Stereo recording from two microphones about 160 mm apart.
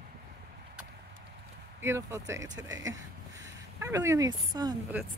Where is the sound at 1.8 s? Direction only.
15° right (ahead or behind).